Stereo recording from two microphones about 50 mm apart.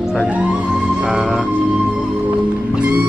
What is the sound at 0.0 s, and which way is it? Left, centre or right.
Music, centre.